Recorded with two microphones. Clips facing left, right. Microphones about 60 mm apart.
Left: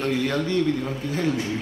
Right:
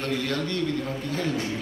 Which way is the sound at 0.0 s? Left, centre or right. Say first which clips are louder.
Left 4 dB; centre.